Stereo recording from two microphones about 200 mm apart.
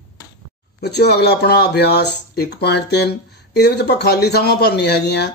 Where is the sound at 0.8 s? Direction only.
55° left (ahead or behind).